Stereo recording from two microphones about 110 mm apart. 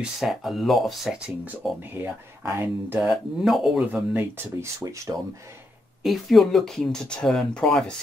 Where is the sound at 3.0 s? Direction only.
Centre (ahead or behind).